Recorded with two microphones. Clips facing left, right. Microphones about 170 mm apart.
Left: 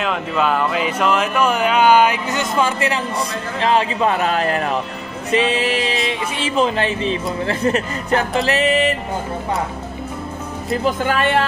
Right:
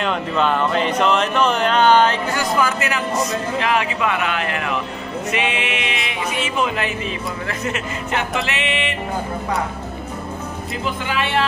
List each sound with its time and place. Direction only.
0.0 s speech: 5° left (ahead or behind); by 8.4 s 35° left (ahead or behind)
8.5 s music: 40° left (ahead or behind)
11.1 s speech: 45° left (ahead or behind)